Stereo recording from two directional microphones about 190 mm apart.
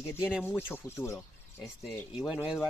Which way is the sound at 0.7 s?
15° left (ahead or behind).